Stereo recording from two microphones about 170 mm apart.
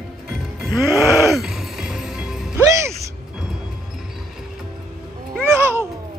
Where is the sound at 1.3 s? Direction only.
Centre (ahead or behind).